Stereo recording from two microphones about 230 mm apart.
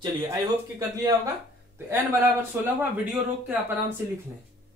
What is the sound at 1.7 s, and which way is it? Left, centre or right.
Speech, centre.